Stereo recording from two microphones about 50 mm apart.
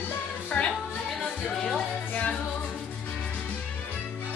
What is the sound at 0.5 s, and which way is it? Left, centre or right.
Music, left.